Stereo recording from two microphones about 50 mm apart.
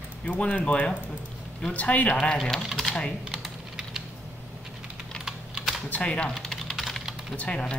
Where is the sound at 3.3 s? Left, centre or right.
Centre.